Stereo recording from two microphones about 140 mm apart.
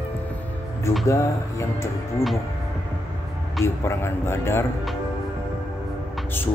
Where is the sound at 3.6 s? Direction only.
20° left (ahead or behind).